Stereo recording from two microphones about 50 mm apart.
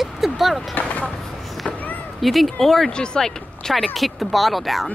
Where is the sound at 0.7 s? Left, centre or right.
Left.